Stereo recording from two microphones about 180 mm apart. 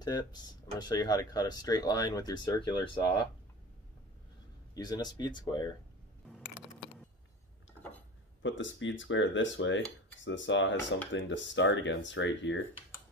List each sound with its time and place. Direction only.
0.0 s speech: 20° left (ahead or behind)
4.7 s speech: 20° left (ahead or behind)
8.4 s speech: 90° left